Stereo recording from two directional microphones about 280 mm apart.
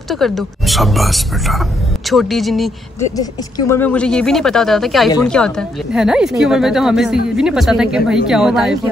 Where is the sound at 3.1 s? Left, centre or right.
Centre.